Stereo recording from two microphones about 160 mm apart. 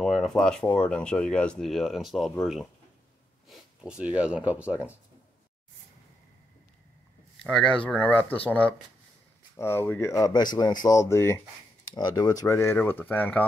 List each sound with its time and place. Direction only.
0.0 s speech: 5° left (ahead or behind)
7.4 s speech: 5° left (ahead or behind)